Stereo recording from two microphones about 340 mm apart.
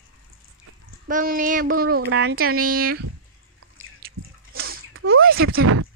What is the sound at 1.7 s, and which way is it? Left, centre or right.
Speech, right.